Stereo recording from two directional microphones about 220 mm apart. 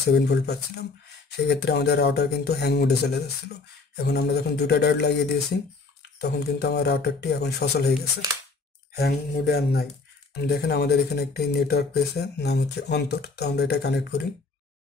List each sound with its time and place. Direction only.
0.0 s speech: 50° left (ahead or behind)
6.1 s speech: 45° left (ahead or behind)